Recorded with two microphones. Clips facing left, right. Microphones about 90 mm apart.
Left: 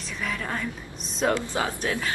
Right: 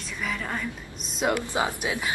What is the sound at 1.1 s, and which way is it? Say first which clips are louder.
Speech: even; 15° right (ahead or behind).